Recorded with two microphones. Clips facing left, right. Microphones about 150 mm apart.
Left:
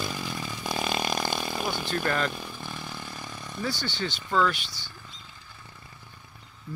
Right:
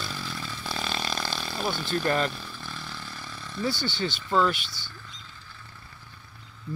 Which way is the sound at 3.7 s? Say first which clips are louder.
Right 3 dB; 5° right (ahead or behind).